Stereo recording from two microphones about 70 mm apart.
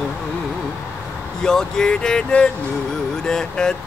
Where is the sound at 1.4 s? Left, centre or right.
Centre.